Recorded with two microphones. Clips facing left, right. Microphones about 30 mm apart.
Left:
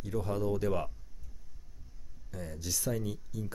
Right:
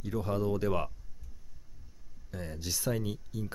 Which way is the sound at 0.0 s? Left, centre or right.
Centre.